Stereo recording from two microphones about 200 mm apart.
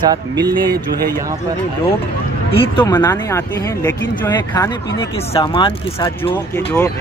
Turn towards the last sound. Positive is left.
turn(degrees=10)  # may be behind; listen again after turning